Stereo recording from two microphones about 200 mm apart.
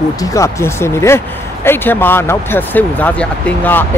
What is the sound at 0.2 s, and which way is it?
Speech, 15° left (ahead or behind).